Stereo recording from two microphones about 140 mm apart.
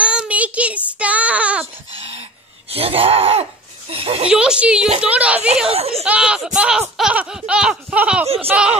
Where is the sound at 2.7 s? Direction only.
45° right (ahead or behind).